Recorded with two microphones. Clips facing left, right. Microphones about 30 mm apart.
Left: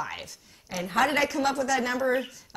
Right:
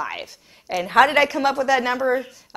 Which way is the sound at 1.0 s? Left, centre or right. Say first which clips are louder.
Right 6 dB; right.